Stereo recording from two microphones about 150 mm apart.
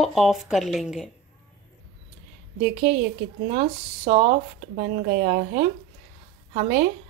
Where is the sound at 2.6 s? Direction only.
55° right (ahead or behind); by 5.4 s 90° right.